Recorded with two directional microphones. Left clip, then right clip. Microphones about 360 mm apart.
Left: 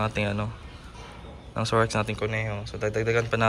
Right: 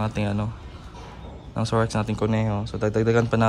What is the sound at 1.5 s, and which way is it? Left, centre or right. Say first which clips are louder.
Speech: even; centre.